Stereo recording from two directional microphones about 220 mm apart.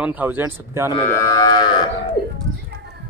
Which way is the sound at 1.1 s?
15° left (ahead or behind).